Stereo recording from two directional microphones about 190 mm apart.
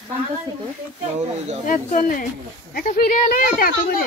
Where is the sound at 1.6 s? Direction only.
45° left (ahead or behind).